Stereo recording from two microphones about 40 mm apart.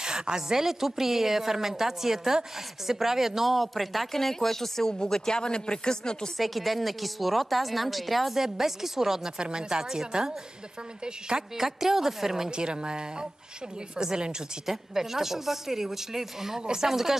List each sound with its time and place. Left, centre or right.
0.0 s a woman's voice: centre
6.3 s a woman's voice: centre
9.4 s a woman's voice: right
12.4 s a woman's voice: right